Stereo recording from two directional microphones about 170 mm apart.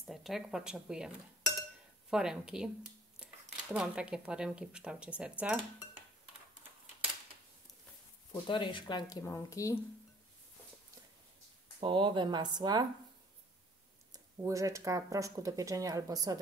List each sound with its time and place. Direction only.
0.0 s speech: centre (ahead or behind)
5.4 s dishes: 10° right (ahead or behind)
8.3 s speech: 30° left (ahead or behind)
11.8 s speech: 30° right (ahead or behind)
14.1 s speech: 20° right (ahead or behind)